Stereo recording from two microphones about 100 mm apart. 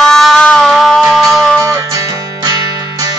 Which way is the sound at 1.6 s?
35° right (ahead or behind).